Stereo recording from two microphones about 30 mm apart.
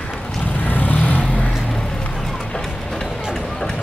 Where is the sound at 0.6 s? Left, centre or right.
Left.